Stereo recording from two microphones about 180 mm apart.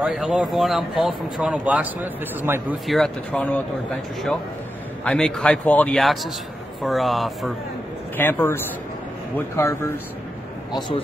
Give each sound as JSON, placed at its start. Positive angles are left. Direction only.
{"t": 0.0, "sound": "speech", "side_deg": -5}
{"t": 2.9, "sound": "speech", "side_deg": 5}
{"t": 5.0, "sound": "speech", "side_deg": 5}
{"t": 8.2, "sound": "speech", "side_deg": 10}
{"t": 9.6, "sound": "speech", "side_deg": 15}